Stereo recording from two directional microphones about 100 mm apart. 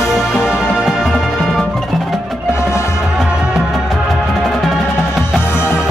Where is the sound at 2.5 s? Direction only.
30° left (ahead or behind).